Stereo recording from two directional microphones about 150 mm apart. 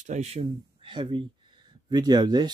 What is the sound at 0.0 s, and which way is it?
Speech, 50° right (ahead or behind).